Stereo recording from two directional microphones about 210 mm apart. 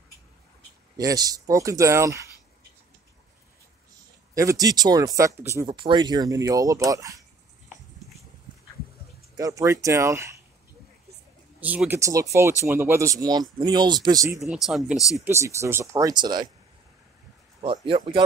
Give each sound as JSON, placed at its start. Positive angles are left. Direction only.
{"t": 0.9, "sound": "speech", "side_deg": -15}
{"t": 4.4, "sound": "speech", "side_deg": -15}
{"t": 9.3, "sound": "speech", "side_deg": -15}
{"t": 11.6, "sound": "speech", "side_deg": -5}
{"t": 14.4, "sound": "speech", "side_deg": 0}
{"t": 15.0, "sound": "speech", "side_deg": 15}
{"t": 15.2, "sound": "speech", "side_deg": -15}
{"t": 17.8, "sound": "speech", "side_deg": -25}